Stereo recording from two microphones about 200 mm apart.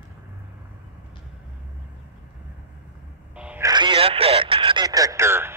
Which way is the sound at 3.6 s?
25° right (ahead or behind).